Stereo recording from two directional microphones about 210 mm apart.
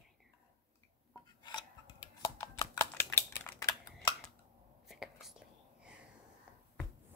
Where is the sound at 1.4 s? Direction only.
20° left (ahead or behind).